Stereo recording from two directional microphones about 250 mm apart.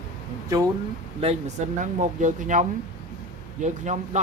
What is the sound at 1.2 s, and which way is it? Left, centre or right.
Speech, right.